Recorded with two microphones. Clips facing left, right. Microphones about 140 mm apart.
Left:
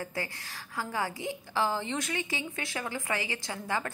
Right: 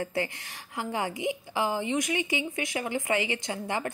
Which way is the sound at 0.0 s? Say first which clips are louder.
Right 6 dB; 25° right (ahead or behind).